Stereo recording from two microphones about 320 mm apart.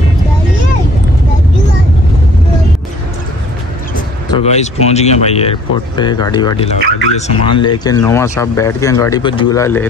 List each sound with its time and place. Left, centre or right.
4.3 s speech: centre